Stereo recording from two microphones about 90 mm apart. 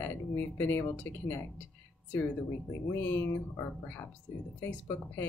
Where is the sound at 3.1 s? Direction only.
25° left (ahead or behind).